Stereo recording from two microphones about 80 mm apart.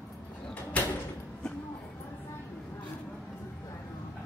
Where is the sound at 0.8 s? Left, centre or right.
Centre.